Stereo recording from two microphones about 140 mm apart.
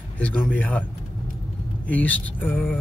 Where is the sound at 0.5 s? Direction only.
10° left (ahead or behind).